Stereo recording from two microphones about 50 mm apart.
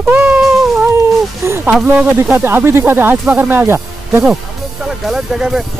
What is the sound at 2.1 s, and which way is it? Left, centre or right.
Speech, right.